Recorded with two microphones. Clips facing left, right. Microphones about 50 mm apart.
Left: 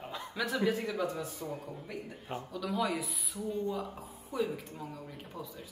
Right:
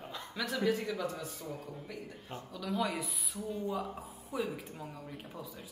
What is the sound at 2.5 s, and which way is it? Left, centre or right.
A woman's voice, centre.